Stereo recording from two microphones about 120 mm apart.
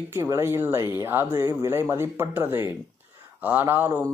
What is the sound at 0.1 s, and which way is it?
Speech, 25° right (ahead or behind).